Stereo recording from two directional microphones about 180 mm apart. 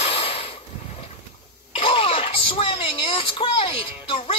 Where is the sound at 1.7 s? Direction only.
30° left (ahead or behind).